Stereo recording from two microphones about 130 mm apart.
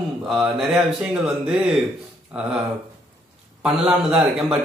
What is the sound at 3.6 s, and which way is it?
A man's voice, 5° right (ahead or behind).